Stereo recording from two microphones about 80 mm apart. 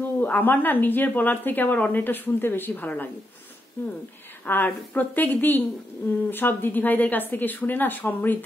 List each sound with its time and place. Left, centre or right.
0.0 s speech: left
4.5 s speech: left